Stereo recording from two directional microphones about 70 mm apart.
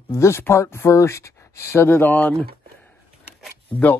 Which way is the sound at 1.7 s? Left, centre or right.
Left.